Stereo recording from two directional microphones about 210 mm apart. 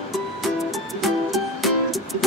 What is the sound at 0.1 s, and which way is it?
Music, centre (ahead or behind).